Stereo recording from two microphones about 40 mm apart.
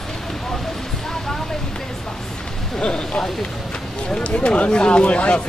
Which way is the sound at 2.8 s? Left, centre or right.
Left.